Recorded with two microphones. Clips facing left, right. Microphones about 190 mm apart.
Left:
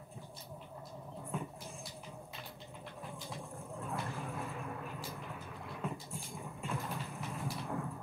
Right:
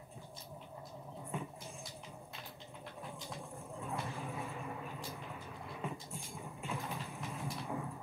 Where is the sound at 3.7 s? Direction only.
Centre (ahead or behind).